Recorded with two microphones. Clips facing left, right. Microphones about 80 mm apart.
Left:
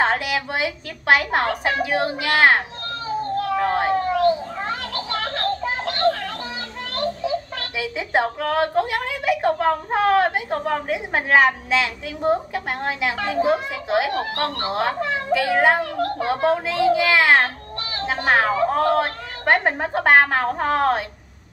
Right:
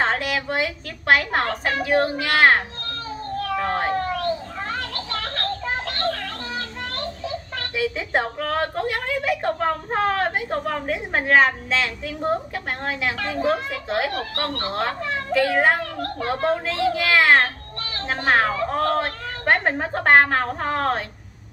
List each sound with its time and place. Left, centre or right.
0.0 s a sound: centre
1.6 s a woman's voice: centre
4.1 s children playing: left
5.9 s music: left
7.7 s a woman's voice: centre